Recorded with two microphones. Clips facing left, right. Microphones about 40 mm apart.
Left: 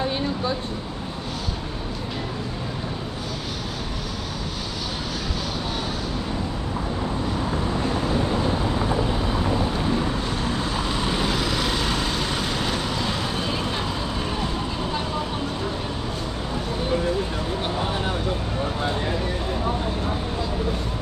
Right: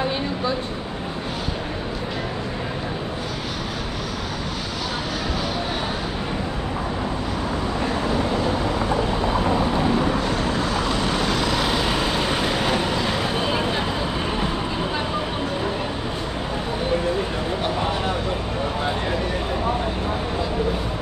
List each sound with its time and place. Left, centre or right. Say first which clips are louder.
9.5 s vehicle: right 3 dB; right
11.1 s vehicle: right 2 dB; centre